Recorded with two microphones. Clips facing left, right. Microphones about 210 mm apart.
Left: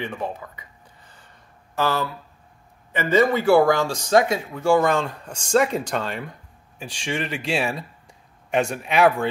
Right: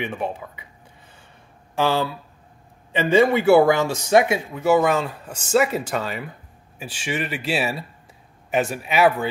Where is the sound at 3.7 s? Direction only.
20° right (ahead or behind).